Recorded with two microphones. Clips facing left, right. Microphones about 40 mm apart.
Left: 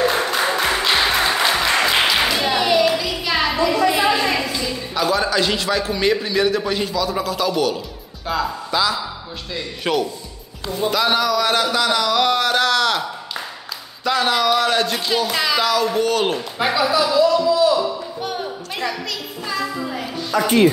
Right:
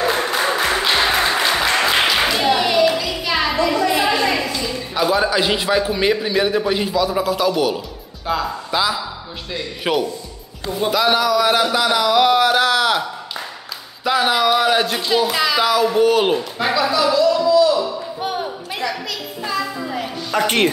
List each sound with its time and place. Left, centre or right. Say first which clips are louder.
0.0 s music: even; centre
1.7 s clapping: even; centre
8.3 s speech: right 1 dB; centre
14.0 s speech: right 1 dB; centre
16.5 s a man's voice: even; centre
19.4 s music: right 1 dB; centre
20.3 s speech: left 2 dB; right